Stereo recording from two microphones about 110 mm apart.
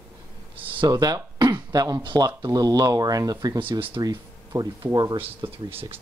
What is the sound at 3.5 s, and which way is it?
Speech, 50° right (ahead or behind).